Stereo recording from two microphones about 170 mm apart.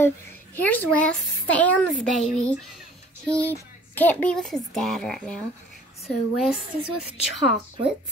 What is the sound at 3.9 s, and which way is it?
A child's voice, 10° left (ahead or behind).